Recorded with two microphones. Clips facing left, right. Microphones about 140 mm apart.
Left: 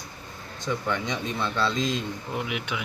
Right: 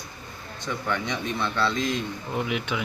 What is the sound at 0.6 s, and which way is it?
Speech, 15° left (ahead or behind).